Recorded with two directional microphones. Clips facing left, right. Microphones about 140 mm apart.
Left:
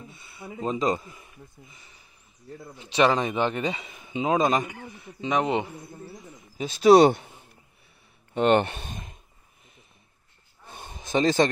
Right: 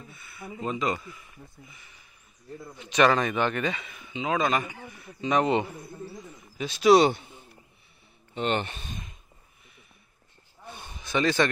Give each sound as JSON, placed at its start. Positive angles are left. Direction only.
{"t": 0.4, "sound": "speech", "side_deg": 30}
{"t": 2.8, "sound": "speech", "side_deg": 25}
{"t": 4.1, "sound": "speech", "side_deg": 40}
{"t": 4.9, "sound": "speech", "side_deg": 20}
{"t": 6.6, "sound": "a man's voice", "side_deg": 40}
{"t": 8.4, "sound": "a man's voice", "side_deg": 55}
{"t": 10.8, "sound": "a sound", "side_deg": 45}